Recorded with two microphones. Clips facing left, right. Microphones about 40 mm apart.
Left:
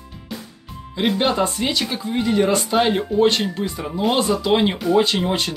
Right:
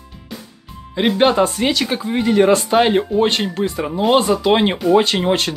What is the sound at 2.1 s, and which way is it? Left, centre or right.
Speech, right.